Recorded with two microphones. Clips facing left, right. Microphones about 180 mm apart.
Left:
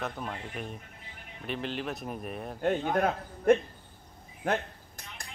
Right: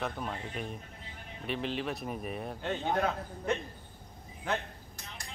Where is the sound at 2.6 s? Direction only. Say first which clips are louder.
Left 5 dB; 50° left (ahead or behind).